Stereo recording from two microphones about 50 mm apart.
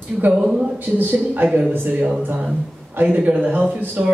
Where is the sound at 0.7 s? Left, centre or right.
Right.